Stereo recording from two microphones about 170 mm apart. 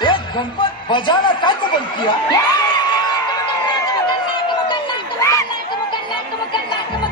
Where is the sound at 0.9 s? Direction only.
25° left (ahead or behind).